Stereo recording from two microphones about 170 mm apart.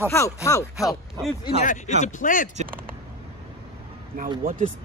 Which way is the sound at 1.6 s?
45° left (ahead or behind).